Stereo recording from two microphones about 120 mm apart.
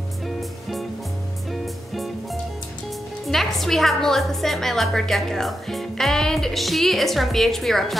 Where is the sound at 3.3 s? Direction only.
Centre (ahead or behind).